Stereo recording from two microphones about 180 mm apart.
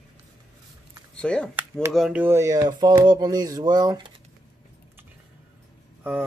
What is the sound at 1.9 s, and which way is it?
Speech, 5° right (ahead or behind).